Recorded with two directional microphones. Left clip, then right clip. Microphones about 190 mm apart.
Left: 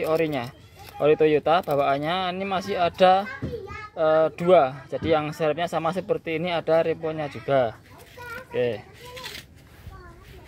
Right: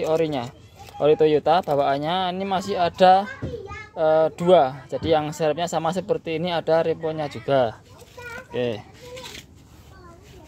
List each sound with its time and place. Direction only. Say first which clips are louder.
0.0 s a child's voice: right 2 dB; 10° right (ahead or behind)